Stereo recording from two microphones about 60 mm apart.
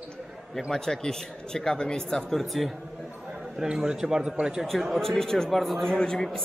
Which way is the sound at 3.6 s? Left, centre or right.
Centre.